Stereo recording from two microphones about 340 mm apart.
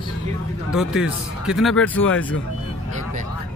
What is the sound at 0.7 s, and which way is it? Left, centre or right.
A man's voice, centre.